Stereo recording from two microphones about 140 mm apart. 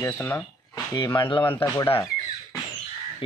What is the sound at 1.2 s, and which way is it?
Speech, 35° left (ahead or behind).